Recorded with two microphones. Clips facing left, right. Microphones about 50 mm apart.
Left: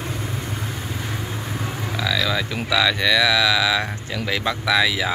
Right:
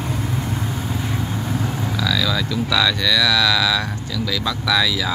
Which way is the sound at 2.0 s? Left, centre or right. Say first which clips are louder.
Even; centre.